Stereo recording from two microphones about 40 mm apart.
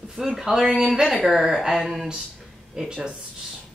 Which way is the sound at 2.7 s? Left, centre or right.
Centre.